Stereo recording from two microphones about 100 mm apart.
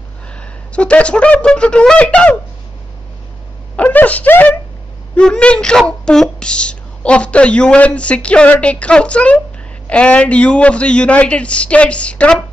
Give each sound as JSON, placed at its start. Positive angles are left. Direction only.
{"t": 0.4, "sound": "speech", "side_deg": 10}
{"t": 3.7, "sound": "a woman's voice", "side_deg": 15}